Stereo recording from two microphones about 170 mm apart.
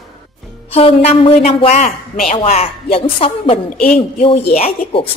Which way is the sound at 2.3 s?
35° left (ahead or behind).